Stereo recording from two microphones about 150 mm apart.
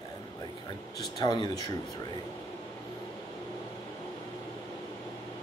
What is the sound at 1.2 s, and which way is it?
Speech, 30° left (ahead or behind).